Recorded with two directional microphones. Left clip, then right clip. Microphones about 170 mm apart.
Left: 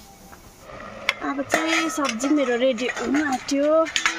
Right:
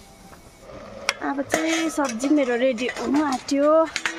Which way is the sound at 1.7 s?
Centre (ahead or behind).